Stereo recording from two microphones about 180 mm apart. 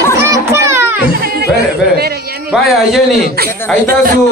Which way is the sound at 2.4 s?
Centre (ahead or behind).